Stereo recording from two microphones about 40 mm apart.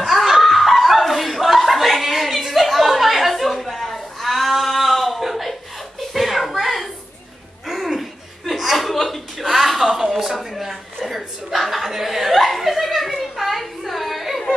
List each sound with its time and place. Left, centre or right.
0.0 s chuckle: centre
6.1 s a sound: centre
7.6 s chuckle: centre